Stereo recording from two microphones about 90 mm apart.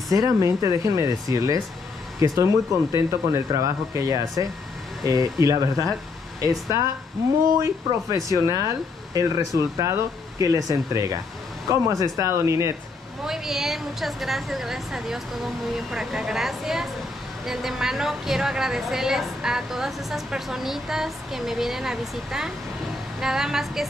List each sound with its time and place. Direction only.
0.1 s speech: 35° right (ahead or behind)
13.2 s a woman's voice: 5° right (ahead or behind)